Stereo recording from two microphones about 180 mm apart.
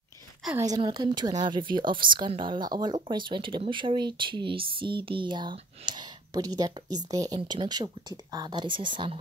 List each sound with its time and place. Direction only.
0.6 s speech: 20° right (ahead or behind)